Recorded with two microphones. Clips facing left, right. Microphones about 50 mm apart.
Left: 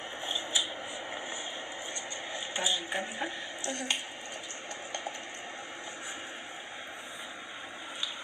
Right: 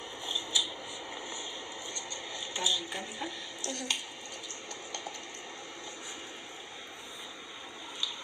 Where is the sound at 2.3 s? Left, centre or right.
Left.